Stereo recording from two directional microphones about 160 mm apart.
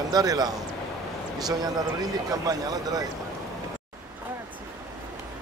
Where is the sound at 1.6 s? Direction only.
25° right (ahead or behind).